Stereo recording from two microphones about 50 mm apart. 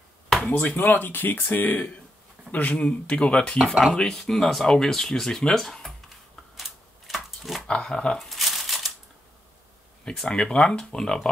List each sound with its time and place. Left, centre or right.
0.5 s speech: left; by 4.1 s centre
4.1 s speech: centre
6.5 s typewriter: centre
7.2 s dog: centre
7.6 s speech: centre
8.2 s crumpling: centre
10.2 s speech: centre